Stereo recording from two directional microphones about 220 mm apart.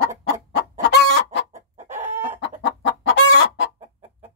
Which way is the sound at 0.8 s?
50° left (ahead or behind).